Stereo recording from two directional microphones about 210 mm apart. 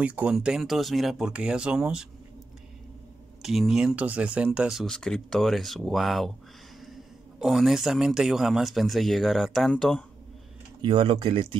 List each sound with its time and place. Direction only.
0.0 s speech: 5° right (ahead or behind)
3.4 s speech: centre (ahead or behind)
7.3 s speech: centre (ahead or behind)
10.8 s speech: 25° right (ahead or behind)